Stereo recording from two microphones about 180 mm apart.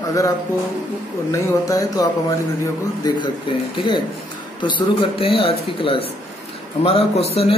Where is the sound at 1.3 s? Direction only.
20° left (ahead or behind).